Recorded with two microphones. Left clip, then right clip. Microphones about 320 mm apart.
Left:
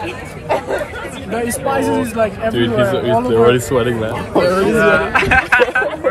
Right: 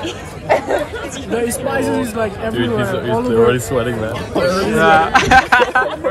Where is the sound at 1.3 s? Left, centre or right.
Centre.